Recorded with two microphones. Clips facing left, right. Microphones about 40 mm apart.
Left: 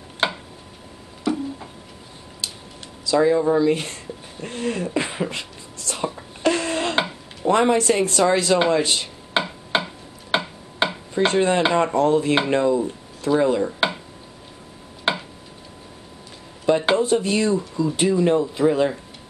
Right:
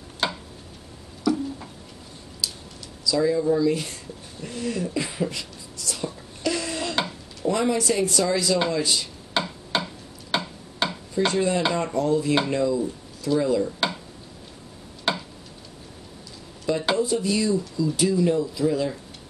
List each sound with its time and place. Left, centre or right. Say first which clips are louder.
0.2 s a sound: left 4 dB; left
1.3 s tick-tock: even; left
2.4 s a sound: right 1 dB; left
11.1 s speech: left 4 dB; left
15.1 s tick-tock: left 3 dB; left
16.6 s speech: left 5 dB; left